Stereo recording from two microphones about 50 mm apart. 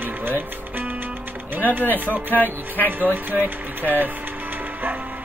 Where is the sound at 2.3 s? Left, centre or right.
Left.